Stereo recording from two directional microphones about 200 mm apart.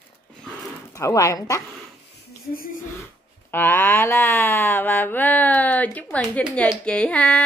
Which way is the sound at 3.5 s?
10° left (ahead or behind).